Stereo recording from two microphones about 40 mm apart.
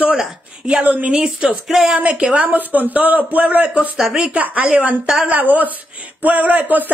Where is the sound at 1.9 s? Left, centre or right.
Right.